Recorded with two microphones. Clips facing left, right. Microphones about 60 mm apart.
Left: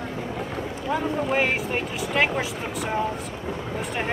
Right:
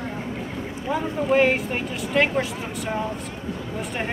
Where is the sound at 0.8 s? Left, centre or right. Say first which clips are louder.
Right 2 dB; centre.